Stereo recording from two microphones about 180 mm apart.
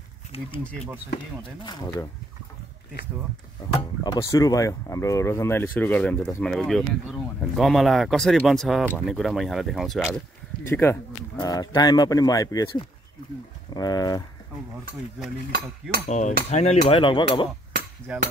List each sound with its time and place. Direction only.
0.3 s cutlery: 35° left (ahead or behind)
1.6 s speech: 25° left (ahead or behind)
4.0 s speech: 20° left (ahead or behind); by 10.2 s 5° left (ahead or behind)
10.6 s speech: 15° left (ahead or behind)
16.1 s cutlery: 40° left (ahead or behind)
16.9 s speech: 30° left (ahead or behind)
18.1 s hammer: 5° right (ahead or behind)